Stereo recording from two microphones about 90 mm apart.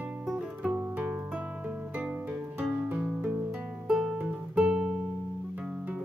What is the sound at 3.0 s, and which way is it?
Guitar, 10° right (ahead or behind).